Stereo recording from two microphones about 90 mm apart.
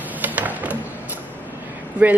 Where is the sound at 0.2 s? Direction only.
20° right (ahead or behind).